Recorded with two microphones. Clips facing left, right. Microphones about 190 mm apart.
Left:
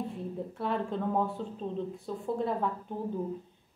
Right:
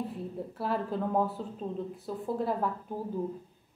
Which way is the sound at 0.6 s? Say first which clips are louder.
Right 1 dB; 5° right (ahead or behind).